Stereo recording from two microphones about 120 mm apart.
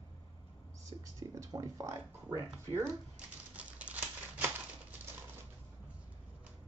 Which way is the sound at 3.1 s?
10° right (ahead or behind).